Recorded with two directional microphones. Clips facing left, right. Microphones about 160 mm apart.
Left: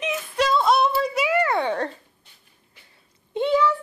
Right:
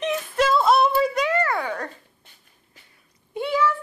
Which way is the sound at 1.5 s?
25° left (ahead or behind).